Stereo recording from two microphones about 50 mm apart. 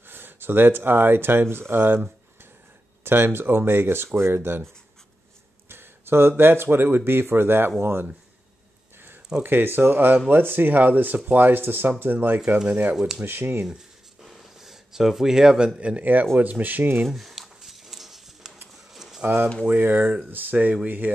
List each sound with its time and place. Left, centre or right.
0.1 s speech: right
5.7 s speech: right
9.4 s speech: right
12.5 s speech: right
12.9 s speech: centre
13.2 s speech: right
13.7 s a sound: centre
16.0 s speech: right
17.1 s a sound: centre
19.2 s speech: right